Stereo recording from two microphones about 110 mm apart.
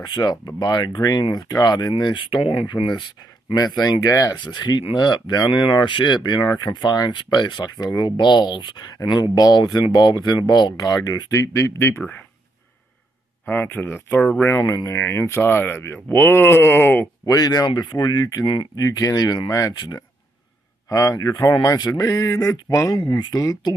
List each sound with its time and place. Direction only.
0.0 s speech: 40° left (ahead or behind)
13.5 s speech: 20° left (ahead or behind)
14.6 s speech: 30° left (ahead or behind)
17.3 s speech: 40° left (ahead or behind)
23.0 s speech: 45° left (ahead or behind)